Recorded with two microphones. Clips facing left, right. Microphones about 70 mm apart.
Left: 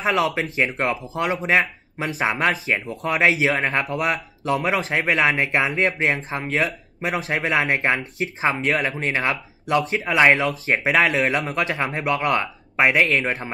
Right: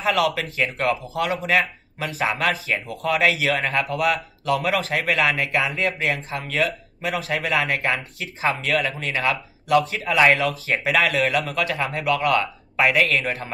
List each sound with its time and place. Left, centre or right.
0.0 s speech: left